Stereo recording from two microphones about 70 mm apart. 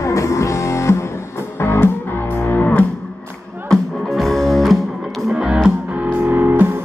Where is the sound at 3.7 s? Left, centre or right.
Centre.